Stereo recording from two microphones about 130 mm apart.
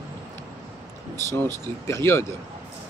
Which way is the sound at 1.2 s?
20° left (ahead or behind).